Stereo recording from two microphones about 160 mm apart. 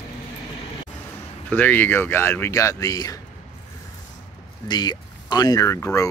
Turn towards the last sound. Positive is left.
turn(degrees=20)  # may be behind; listen again after turning